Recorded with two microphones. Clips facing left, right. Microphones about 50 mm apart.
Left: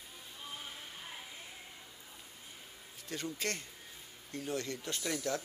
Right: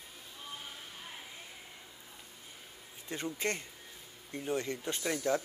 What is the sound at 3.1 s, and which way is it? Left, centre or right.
Speech, right.